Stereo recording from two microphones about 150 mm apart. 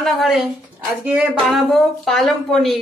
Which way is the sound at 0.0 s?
Centre (ahead or behind).